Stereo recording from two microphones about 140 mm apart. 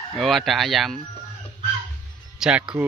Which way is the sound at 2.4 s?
5° right (ahead or behind).